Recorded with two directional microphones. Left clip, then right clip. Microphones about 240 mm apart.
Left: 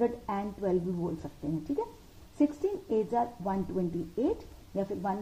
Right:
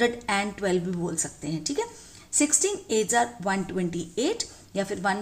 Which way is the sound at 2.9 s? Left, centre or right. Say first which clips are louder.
Right 6 dB; right.